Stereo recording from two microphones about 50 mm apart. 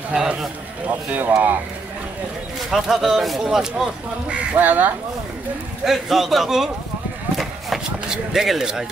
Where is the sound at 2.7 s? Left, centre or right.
Centre.